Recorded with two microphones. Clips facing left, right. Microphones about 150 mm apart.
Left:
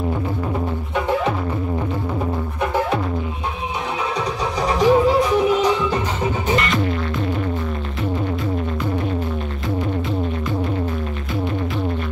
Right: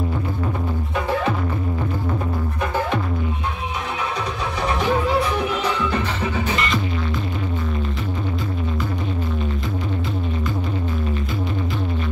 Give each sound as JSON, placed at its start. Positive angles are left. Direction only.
{"t": 4.7, "sound": "music", "side_deg": 40}
{"t": 5.6, "sound": "music", "side_deg": 20}